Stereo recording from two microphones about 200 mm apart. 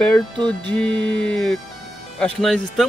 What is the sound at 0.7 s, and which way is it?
Speech, 5° left (ahead or behind).